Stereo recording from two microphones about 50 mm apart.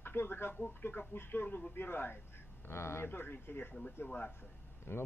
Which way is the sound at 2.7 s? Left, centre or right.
Left.